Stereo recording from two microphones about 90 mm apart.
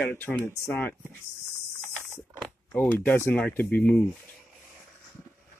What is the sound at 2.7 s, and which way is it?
Speech, 25° left (ahead or behind).